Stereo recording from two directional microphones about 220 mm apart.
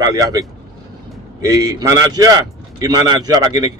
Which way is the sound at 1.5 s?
15° right (ahead or behind).